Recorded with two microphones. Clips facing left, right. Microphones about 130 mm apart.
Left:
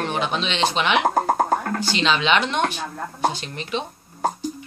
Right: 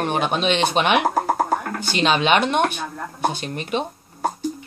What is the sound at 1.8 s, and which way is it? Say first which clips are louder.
Speech: right 2 dB; 50° right (ahead or behind).